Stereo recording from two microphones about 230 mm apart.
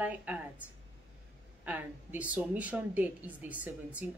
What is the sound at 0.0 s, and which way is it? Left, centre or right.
Speech, centre.